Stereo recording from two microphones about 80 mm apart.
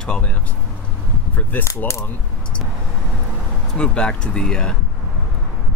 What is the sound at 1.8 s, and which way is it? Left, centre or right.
Speech, left.